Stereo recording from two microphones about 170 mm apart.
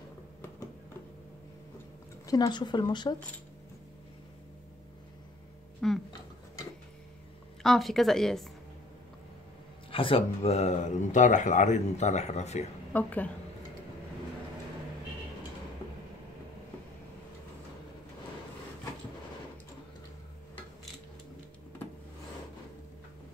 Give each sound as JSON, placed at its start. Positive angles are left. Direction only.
{"t": 2.2, "sound": "speech", "side_deg": 20}
{"t": 5.8, "sound": "speech", "side_deg": 0}
{"t": 7.6, "sound": "speech", "side_deg": 0}
{"t": 9.8, "sound": "speech", "side_deg": 30}
{"t": 12.9, "sound": "a woman's voice", "side_deg": 10}